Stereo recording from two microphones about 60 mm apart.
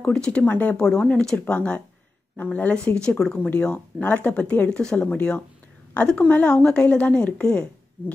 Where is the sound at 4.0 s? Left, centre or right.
Left.